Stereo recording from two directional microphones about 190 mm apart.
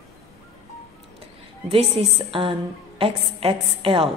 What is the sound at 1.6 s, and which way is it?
A woman's voice, 30° right (ahead or behind).